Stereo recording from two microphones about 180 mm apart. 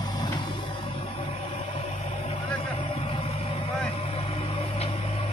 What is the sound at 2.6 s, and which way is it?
Vehicle, 30° left (ahead or behind).